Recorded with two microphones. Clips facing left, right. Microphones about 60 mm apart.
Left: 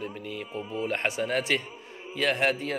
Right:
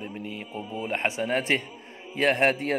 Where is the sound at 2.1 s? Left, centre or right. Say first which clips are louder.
Right 3 dB; right.